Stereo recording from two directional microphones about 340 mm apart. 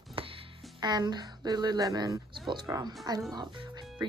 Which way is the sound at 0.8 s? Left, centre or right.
Centre.